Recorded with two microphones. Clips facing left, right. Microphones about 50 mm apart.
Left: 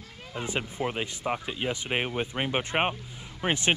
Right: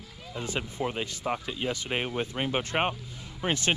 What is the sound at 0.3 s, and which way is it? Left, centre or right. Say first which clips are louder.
Speech: left 1 dB; left.